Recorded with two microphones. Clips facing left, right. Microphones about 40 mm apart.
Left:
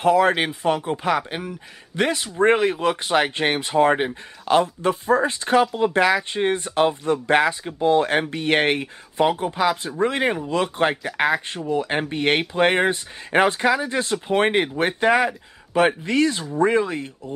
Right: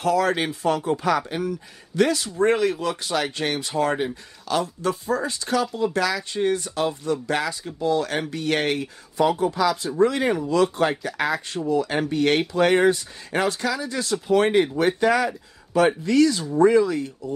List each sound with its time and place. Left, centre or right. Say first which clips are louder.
0.0 s speech: left 4 dB; left